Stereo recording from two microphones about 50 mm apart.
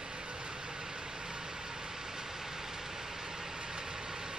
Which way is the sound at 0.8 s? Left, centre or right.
Centre.